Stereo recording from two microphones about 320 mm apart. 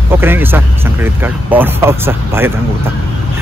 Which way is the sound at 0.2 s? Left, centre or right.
Centre.